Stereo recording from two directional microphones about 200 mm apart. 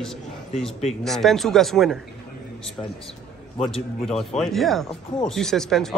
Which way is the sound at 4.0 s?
Centre (ahead or behind).